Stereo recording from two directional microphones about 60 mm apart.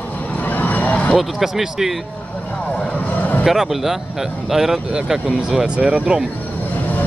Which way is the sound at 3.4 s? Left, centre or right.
Centre.